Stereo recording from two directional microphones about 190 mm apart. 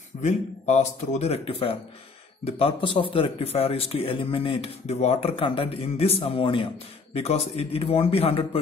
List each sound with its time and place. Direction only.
0.2 s speech: 40° left (ahead or behind)